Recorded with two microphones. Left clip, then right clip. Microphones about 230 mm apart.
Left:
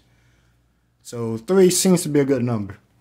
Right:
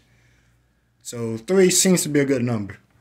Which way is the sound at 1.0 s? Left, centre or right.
Centre.